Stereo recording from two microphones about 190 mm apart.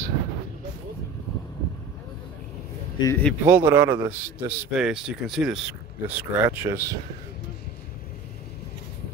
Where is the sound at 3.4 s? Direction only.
15° right (ahead or behind).